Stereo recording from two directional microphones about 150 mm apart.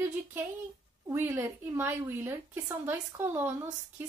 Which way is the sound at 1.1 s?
15° right (ahead or behind).